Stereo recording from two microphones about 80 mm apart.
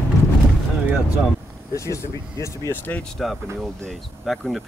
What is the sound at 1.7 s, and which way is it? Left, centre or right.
Speech, left.